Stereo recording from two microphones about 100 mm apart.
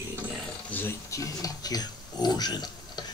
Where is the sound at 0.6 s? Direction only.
20° left (ahead or behind).